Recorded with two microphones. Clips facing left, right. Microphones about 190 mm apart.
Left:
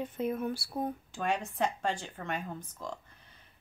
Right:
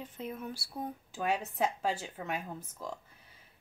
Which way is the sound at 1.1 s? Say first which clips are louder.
Right 4 dB; 5° right (ahead or behind).